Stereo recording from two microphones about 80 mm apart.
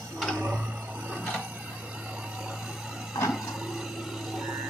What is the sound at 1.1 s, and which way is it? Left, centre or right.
Printer, centre.